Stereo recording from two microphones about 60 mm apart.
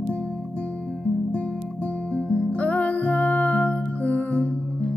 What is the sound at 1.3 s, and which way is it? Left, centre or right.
Music, left.